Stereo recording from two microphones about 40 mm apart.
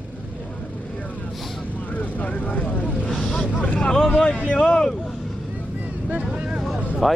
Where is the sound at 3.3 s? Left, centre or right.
Left.